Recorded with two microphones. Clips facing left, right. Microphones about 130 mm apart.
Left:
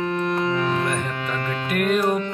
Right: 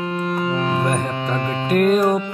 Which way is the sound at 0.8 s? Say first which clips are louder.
Right 4 dB; 40° right (ahead or behind).